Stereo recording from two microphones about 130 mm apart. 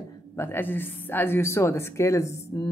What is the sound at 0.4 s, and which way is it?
A woman's voice, 15° left (ahead or behind).